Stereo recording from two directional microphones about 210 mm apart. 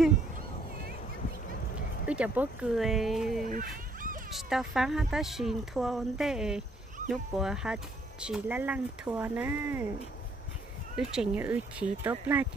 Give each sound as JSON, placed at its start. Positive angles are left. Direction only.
{"t": 2.0, "sound": "speech", "side_deg": -5}
{"t": 3.4, "sound": "a sound", "side_deg": -40}
{"t": 4.3, "sound": "speech", "side_deg": 0}
{"t": 11.0, "sound": "speech", "side_deg": -5}